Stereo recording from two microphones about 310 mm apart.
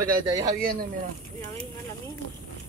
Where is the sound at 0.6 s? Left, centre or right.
Right.